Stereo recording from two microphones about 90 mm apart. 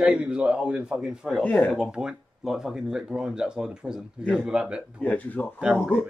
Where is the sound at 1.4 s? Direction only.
15° left (ahead or behind).